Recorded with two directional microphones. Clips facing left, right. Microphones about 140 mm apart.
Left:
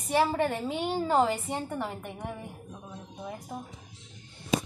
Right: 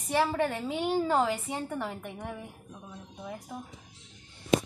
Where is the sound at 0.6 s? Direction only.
5° right (ahead or behind).